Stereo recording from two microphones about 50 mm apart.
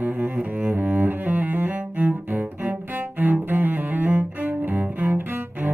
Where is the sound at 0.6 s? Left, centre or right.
Right.